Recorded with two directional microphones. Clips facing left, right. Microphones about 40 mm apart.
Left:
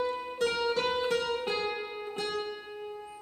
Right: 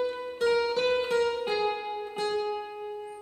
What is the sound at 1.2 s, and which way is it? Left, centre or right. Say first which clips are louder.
Music: right 4 dB; centre.